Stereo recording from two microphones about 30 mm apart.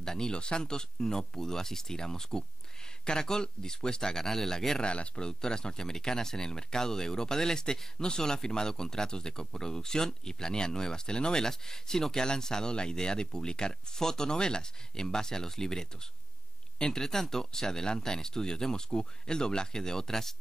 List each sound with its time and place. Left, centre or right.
0.0 s speech: left
4.7 s speech: left
5.4 s speech: left
16.9 s speech: centre